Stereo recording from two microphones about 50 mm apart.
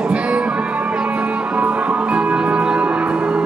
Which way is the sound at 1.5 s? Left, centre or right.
Right.